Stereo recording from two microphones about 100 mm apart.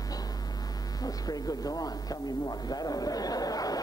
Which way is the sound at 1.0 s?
40° left (ahead or behind).